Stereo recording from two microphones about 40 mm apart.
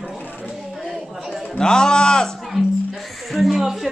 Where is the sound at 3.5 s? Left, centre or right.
Centre.